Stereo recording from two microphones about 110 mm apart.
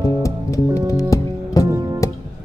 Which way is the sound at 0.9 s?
30° left (ahead or behind).